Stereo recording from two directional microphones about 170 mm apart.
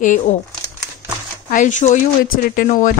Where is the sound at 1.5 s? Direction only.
50° left (ahead or behind).